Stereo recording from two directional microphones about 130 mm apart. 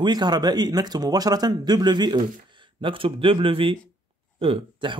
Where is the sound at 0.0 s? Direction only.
35° right (ahead or behind).